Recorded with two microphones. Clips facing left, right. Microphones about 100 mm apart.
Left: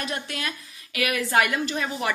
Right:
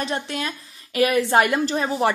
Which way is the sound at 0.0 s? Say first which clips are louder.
Right 5 dB; 30° right (ahead or behind).